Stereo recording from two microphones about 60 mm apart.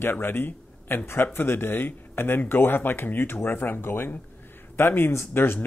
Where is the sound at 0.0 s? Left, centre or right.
Left.